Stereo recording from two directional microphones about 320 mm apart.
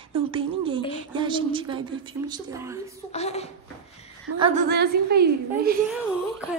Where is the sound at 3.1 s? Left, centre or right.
Centre.